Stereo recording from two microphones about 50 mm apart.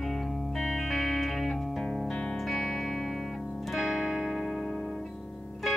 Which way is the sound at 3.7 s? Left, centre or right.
Centre.